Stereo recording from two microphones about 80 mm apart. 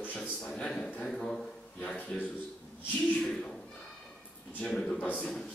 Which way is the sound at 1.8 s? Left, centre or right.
Centre.